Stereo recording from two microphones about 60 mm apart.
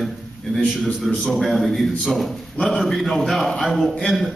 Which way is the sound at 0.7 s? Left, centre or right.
Centre.